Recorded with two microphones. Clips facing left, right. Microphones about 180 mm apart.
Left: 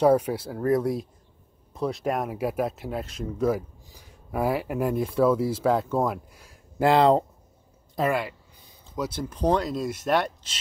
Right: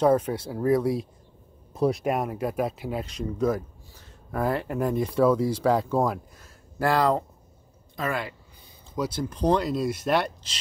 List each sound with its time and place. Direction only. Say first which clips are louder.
0.0 s speech: left 1 dB; 10° left (ahead or behind)
2.0 s speech: even; centre (ahead or behind)
6.8 s speech: left 4 dB; 25° left (ahead or behind)
8.1 s speech: left 4 dB; 5° left (ahead or behind)